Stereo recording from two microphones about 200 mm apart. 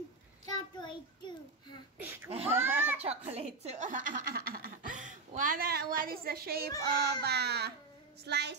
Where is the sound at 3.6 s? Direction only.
40° right (ahead or behind); by 8.6 s 55° right (ahead or behind).